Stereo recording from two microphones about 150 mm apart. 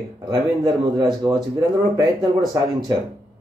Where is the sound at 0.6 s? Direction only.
25° right (ahead or behind).